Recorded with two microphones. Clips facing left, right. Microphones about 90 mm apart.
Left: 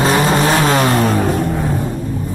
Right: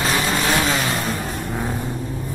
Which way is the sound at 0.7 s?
55° left (ahead or behind).